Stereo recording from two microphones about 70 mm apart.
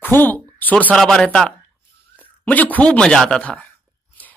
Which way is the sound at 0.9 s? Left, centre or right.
Centre.